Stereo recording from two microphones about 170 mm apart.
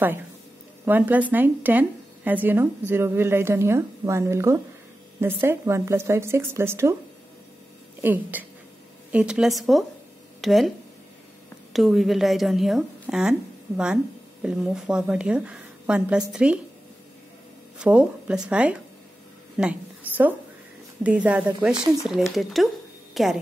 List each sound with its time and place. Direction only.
0.8 s speech: 10° right (ahead or behind)
8.0 s a woman's voice: 10° right (ahead or behind)
11.7 s a woman's voice: centre (ahead or behind)
17.7 s a woman's voice: 10° right (ahead or behind)